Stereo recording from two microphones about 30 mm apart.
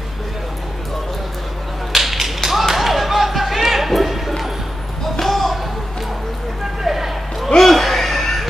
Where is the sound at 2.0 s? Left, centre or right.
Centre.